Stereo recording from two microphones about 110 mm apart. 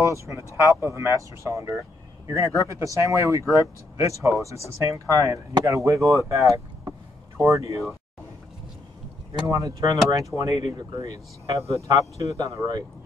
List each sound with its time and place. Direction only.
0.6 s speech: 25° right (ahead or behind)
9.5 s speech: 30° right (ahead or behind)